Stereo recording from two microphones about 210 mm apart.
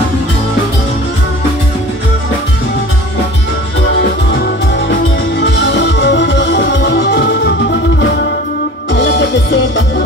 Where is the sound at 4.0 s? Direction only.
50° left (ahead or behind).